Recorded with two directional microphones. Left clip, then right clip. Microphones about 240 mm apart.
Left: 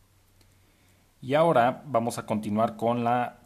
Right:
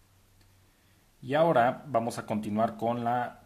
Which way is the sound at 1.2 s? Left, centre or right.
Centre.